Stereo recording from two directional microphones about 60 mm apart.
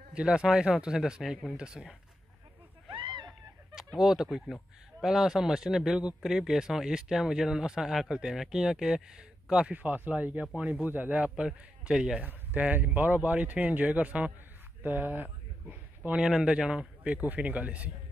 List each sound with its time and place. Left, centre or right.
0.1 s speech: centre
3.7 s speech: centre
9.7 s speech: right
11.3 s speech: centre
12.3 s speech: right
16.0 s speech: centre